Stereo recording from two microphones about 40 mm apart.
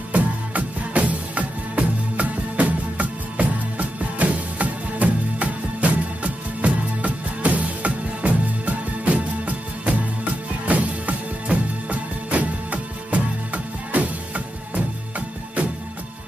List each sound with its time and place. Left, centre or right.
0.1 s music: right